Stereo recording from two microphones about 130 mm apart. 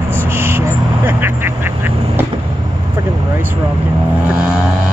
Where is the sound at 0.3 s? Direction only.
20° right (ahead or behind).